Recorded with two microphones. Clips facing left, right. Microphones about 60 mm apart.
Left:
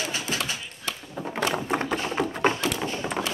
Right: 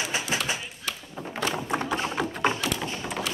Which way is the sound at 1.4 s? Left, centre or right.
Left.